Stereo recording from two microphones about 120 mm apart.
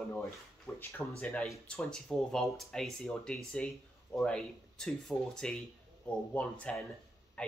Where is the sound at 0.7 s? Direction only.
20° left (ahead or behind).